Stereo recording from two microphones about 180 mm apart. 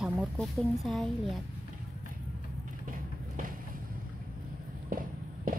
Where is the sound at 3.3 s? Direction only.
50° right (ahead or behind).